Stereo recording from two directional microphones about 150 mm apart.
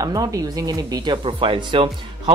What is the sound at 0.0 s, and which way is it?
Speech, 25° right (ahead or behind).